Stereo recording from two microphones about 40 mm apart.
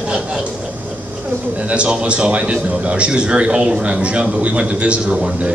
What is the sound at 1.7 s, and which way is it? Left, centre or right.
A man's voice, right.